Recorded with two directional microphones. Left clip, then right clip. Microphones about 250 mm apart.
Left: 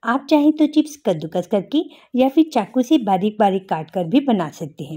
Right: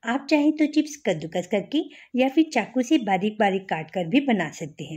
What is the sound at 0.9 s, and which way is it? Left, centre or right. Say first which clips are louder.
Speech: left 5 dB; left.